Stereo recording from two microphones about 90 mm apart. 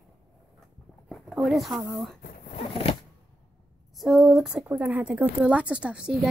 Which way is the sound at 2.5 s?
85° left.